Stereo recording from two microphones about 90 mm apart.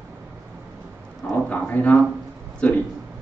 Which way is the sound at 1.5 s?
15° left (ahead or behind).